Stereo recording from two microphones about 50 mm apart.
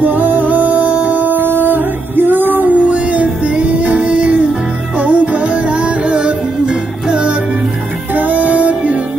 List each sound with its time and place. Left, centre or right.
0.0 s music: right
1.4 s music: right
2.7 s music: right
8.1 s music: right